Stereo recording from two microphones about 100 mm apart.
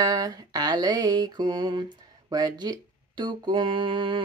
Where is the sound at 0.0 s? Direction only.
35° right (ahead or behind).